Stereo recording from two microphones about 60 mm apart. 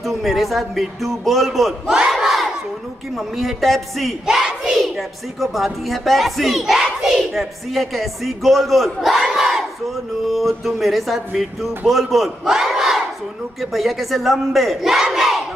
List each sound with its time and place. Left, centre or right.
0.0 s speech: centre
2.0 s crowd: centre
3.2 s speech: centre
4.4 s speech: centre